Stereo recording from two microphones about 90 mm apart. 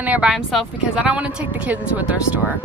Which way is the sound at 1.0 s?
15° right (ahead or behind).